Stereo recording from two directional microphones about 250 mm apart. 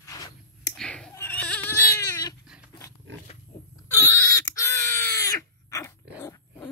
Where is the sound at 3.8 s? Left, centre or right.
Centre.